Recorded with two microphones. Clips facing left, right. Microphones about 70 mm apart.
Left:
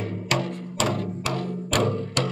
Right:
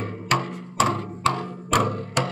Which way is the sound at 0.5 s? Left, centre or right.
Right.